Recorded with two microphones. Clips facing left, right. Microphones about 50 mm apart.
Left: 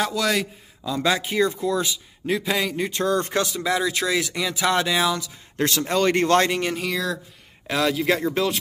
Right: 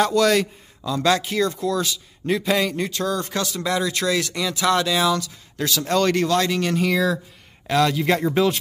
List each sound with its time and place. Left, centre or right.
0.0 s a man's voice: centre
0.9 s speech: centre
2.2 s a man's voice: centre
2.9 s speech: left
3.5 s speech: centre
5.6 s speech: left
5.9 s speech: centre
6.1 s speech: left
6.7 s a man's voice: centre